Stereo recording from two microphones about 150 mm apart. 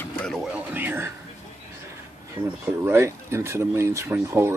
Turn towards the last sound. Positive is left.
turn(degrees=-15)  # may be behind; listen again after turning